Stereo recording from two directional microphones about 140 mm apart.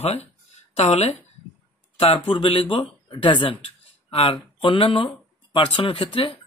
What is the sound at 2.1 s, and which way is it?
Speech, 35° left (ahead or behind).